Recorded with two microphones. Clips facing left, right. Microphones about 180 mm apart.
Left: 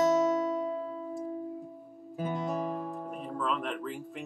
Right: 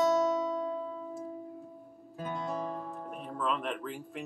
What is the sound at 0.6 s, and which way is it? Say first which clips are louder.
Music: left 2 dB; 5° left (ahead or behind).